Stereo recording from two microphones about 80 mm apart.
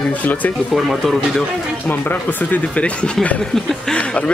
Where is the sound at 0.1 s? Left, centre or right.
Left.